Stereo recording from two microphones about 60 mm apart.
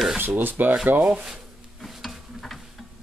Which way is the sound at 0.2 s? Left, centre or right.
Right.